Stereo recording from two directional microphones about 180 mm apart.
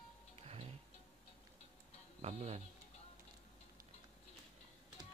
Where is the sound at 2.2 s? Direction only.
40° right (ahead or behind).